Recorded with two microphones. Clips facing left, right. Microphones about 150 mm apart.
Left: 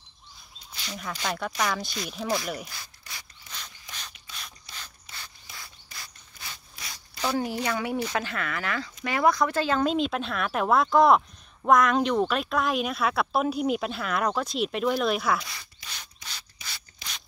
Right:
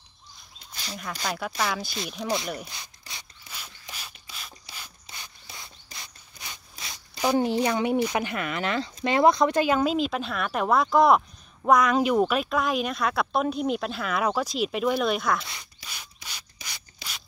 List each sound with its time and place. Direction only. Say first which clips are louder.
0.9 s speech: even; centre (ahead or behind)
3.9 s rub: even; 5° right (ahead or behind)
5.1 s rub: right 1 dB; 20° right (ahead or behind)
7.2 s speech: right 5 dB; 20° right (ahead or behind); by 15.4 s centre (ahead or behind)
15.9 s rub: even; 10° right (ahead or behind)